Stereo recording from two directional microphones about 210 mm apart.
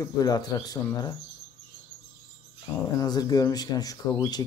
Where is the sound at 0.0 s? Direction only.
15° left (ahead or behind).